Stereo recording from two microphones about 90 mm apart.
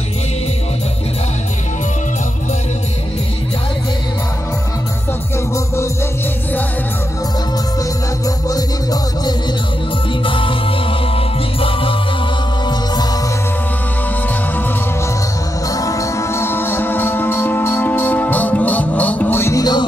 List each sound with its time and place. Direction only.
10.2 s music: 70° left (ahead or behind)
15.7 s music: 40° left (ahead or behind); by 19.5 s 25° left (ahead or behind)
19.5 s music: 50° left (ahead or behind)